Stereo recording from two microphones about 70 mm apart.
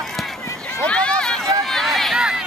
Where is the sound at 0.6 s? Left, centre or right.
Centre.